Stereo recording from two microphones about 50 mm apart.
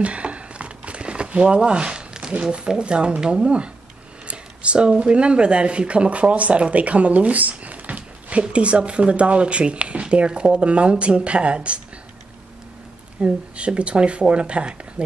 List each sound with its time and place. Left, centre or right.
0.0 s a sound: right
2.5 s speech: right
13.2 s speech: right